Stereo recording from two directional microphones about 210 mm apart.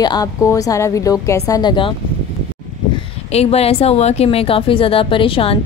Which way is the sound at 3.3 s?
30° left (ahead or behind).